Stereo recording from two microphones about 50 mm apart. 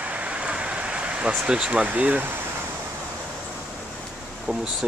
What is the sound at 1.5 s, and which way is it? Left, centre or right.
Speech, right.